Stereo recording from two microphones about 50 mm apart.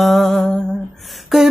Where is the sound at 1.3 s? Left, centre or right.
Centre.